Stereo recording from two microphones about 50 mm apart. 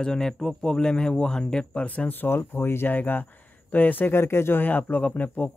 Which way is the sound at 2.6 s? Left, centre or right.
Left.